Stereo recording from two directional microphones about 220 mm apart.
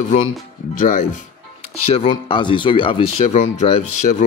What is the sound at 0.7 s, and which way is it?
Speech, 35° left (ahead or behind).